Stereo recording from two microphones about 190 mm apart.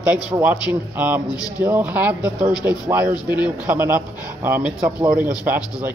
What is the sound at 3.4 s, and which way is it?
Speech, 10° right (ahead or behind).